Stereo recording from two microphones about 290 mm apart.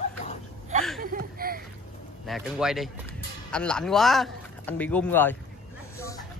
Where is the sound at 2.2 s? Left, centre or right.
Centre.